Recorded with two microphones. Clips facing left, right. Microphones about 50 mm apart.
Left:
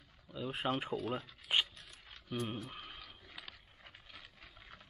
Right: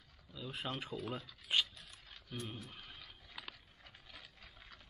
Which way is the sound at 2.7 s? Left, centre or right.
Left.